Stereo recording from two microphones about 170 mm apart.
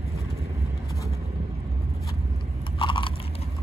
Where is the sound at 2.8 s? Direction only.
25° left (ahead or behind).